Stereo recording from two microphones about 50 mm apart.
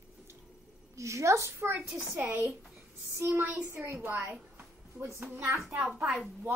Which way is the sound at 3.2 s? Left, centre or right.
Right.